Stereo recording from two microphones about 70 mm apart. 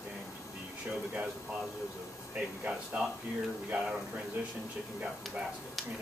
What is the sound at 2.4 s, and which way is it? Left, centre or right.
Speech, right.